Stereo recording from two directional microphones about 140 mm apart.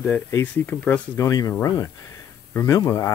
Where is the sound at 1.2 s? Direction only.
25° left (ahead or behind).